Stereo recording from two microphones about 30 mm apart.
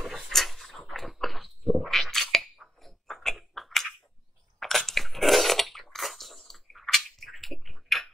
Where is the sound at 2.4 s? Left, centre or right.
Centre.